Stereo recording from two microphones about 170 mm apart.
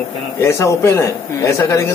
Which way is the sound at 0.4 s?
15° left (ahead or behind).